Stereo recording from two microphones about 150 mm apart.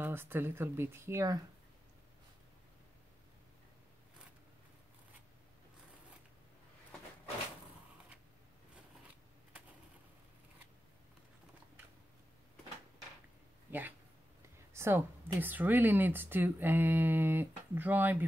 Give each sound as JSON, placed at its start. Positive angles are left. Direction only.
{"t": 0.0, "sound": "speech", "side_deg": -15}
{"t": 13.7, "sound": "a sound", "side_deg": -15}
{"t": 14.7, "sound": "speech", "side_deg": -15}